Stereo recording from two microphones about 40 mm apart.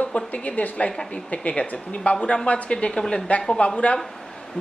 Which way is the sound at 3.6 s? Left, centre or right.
Left.